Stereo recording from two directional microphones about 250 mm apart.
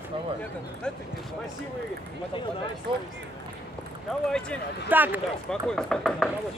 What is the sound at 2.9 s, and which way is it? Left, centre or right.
Speech, centre.